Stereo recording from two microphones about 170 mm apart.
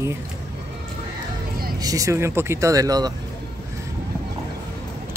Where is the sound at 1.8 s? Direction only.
20° right (ahead or behind).